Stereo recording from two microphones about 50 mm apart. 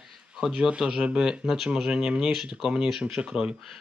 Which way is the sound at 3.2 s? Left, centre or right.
Right.